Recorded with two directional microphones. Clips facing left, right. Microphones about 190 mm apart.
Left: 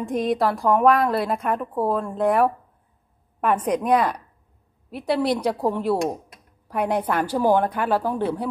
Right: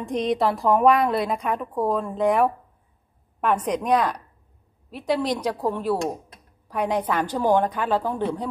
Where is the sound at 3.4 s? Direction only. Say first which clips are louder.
Left 2 dB; 10° left (ahead or behind).